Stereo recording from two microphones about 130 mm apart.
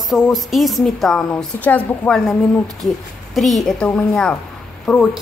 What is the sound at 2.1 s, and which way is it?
A woman's voice, centre (ahead or behind).